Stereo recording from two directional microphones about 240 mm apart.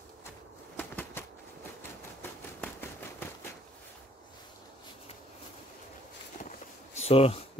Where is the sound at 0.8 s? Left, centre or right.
Centre.